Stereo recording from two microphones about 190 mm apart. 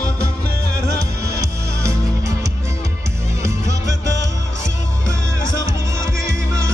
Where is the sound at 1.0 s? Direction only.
15° right (ahead or behind).